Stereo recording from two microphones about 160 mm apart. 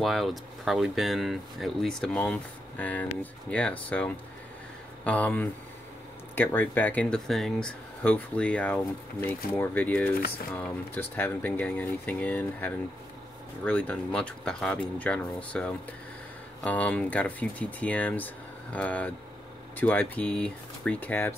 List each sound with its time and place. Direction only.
0.0 s speech: centre (ahead or behind)